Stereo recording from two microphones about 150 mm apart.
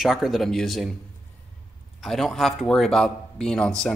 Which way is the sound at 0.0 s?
Centre (ahead or behind).